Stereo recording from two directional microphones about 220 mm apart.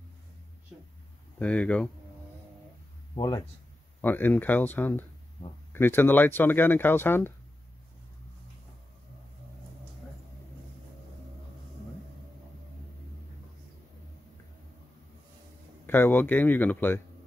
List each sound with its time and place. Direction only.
1.4 s speech: 5° left (ahead or behind)
3.2 s speech: 20° left (ahead or behind)
15.9 s speech: 10° left (ahead or behind)